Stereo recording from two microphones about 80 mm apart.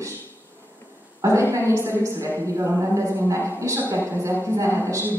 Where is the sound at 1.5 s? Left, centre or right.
Right.